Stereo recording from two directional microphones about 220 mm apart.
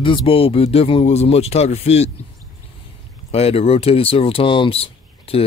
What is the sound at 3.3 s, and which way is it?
Speech, 25° left (ahead or behind).